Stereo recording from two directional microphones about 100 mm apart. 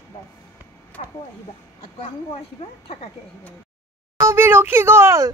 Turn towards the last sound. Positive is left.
turn(degrees=-30)  # may be behind; listen again after turning